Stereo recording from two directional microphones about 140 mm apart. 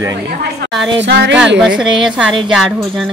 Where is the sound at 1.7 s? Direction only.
5° right (ahead or behind).